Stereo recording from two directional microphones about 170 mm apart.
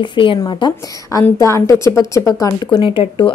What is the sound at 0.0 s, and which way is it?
A woman's voice, 30° left (ahead or behind).